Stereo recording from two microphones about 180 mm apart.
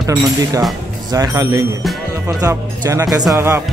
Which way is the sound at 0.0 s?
20° right (ahead or behind).